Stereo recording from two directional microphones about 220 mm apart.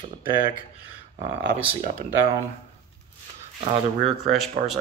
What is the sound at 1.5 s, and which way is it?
Speech, 30° right (ahead or behind).